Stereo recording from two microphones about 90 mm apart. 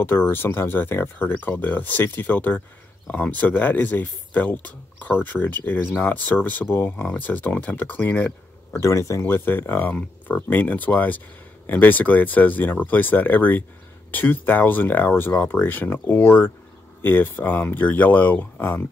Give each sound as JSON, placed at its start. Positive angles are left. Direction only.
{"t": 0.0, "sound": "speech", "side_deg": 25}
{"t": 8.7, "sound": "speech", "side_deg": 35}